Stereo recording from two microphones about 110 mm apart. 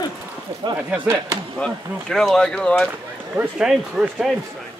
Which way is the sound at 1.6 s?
5° left (ahead or behind).